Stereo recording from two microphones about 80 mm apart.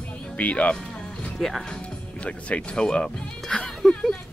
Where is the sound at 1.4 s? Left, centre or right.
Centre.